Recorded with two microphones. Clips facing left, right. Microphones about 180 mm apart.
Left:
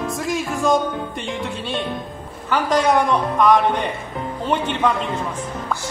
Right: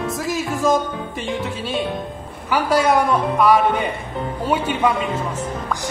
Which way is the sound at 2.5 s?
5° right (ahead or behind).